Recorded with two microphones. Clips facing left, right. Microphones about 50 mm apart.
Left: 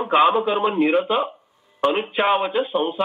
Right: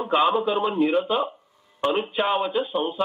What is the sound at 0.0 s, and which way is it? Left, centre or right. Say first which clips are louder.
A man's voice: left 4 dB; left.